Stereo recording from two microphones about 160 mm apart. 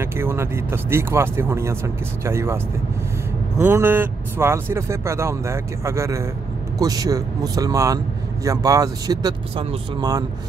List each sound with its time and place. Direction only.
0.0 s speech: 15° right (ahead or behind)